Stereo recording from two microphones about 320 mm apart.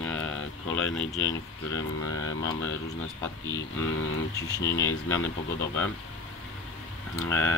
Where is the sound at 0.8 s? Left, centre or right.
Centre.